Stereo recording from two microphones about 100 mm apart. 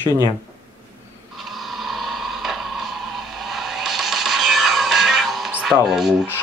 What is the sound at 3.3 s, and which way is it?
Music, centre (ahead or behind).